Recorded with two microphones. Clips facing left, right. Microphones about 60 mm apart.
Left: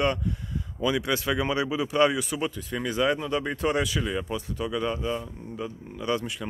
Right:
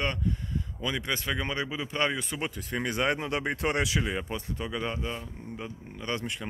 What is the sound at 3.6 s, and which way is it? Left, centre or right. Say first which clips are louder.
Speech: left 2 dB; right.